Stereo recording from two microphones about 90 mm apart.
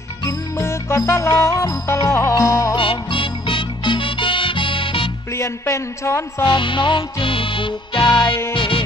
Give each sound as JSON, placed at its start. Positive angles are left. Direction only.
{"t": 0.3, "sound": "music", "side_deg": 30}
{"t": 2.7, "sound": "music", "side_deg": 70}
{"t": 5.3, "sound": "a man's voice", "side_deg": 30}
{"t": 6.4, "sound": "music", "side_deg": 70}
{"t": 8.5, "sound": "music", "side_deg": 75}